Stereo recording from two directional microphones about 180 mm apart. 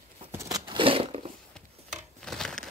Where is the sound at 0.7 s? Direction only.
30° right (ahead or behind).